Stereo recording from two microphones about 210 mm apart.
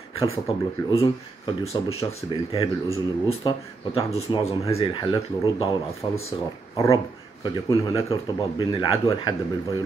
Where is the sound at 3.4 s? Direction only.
25° left (ahead or behind).